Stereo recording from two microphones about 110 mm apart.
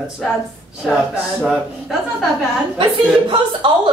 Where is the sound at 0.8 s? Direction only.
5° right (ahead or behind).